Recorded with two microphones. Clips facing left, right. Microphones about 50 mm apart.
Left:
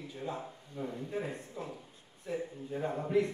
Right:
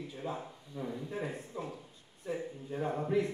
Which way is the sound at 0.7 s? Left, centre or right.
Left.